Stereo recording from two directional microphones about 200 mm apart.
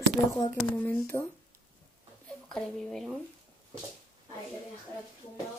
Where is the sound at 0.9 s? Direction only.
10° left (ahead or behind).